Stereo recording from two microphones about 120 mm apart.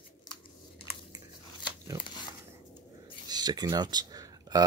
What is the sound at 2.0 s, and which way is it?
Speech, 40° left (ahead or behind).